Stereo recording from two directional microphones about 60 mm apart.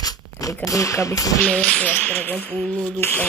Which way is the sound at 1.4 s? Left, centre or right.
Centre.